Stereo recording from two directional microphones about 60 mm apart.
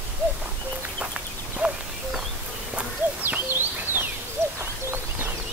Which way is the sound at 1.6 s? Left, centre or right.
Right.